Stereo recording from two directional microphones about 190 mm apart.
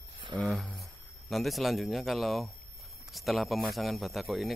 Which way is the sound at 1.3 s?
Centre (ahead or behind).